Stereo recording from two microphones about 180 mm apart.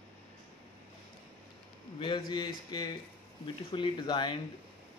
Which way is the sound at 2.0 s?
25° left (ahead or behind).